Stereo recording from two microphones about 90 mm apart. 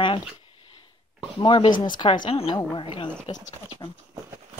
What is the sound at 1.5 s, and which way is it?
A woman's voice, 60° left (ahead or behind).